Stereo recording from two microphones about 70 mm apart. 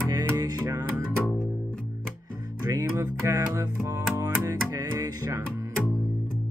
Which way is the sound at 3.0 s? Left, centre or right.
Right.